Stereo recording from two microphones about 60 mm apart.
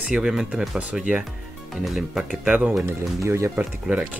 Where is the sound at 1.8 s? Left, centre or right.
Centre.